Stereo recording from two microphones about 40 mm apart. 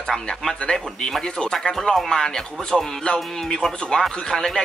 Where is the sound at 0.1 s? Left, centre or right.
Centre.